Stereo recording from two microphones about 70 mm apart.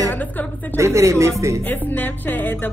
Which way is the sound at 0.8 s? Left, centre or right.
Right.